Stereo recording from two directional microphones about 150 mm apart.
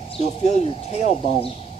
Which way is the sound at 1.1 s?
40° left (ahead or behind).